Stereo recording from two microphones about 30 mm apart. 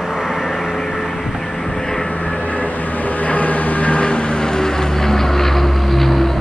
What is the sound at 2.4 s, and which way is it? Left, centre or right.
Vehicle, left.